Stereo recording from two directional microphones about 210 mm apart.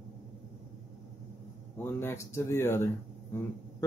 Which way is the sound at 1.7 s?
10° left (ahead or behind).